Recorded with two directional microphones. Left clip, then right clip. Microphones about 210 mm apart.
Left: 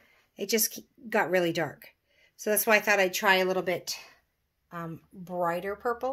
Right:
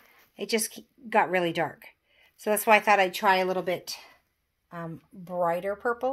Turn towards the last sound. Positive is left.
turn(degrees=-10)  # may be behind; listen again after turning